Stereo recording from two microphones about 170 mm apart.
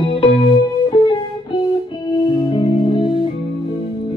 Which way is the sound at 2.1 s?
30° left (ahead or behind).